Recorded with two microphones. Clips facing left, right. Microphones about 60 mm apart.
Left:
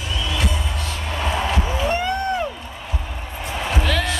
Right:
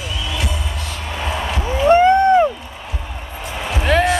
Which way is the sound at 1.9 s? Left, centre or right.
Right.